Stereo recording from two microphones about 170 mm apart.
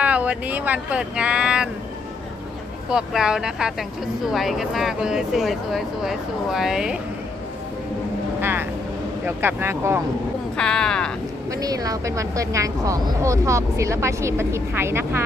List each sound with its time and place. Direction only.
0.0 s speech: 10° right (ahead or behind)
2.9 s speech: 5° right (ahead or behind)
8.4 s speech: 15° right (ahead or behind)
10.6 s speech: 5° left (ahead or behind)
11.5 s speech: 20° right (ahead or behind)